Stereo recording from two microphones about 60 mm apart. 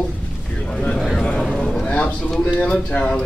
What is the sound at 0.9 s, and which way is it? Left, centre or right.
Speech, centre.